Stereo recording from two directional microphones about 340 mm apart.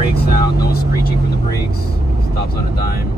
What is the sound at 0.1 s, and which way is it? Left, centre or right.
Vehicle, left.